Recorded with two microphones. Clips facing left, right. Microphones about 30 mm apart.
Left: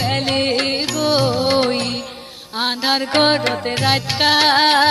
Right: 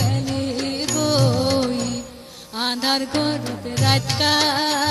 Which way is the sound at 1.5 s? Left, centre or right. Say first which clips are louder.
Left 4 dB; left.